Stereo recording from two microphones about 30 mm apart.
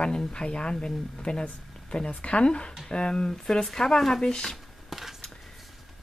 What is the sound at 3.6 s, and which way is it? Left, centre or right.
Speech, centre.